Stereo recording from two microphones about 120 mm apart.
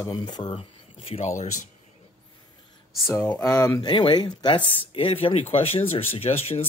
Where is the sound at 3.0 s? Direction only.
20° left (ahead or behind).